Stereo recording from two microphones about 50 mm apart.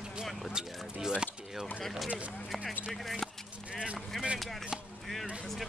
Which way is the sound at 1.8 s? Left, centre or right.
Centre.